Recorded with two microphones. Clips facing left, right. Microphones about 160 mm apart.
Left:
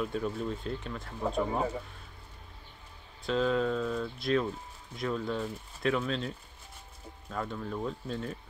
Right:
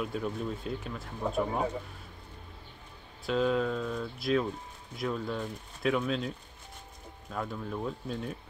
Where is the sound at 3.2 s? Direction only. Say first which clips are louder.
Even; 5° right (ahead or behind).